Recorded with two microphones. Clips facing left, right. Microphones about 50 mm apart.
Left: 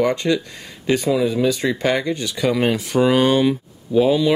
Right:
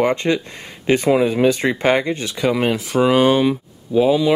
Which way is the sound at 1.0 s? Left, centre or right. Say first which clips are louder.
Right 4 dB; right.